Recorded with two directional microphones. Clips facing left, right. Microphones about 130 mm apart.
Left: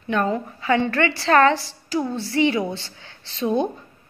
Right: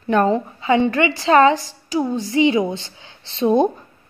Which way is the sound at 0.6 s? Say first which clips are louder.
Right 2 dB; 20° right (ahead or behind).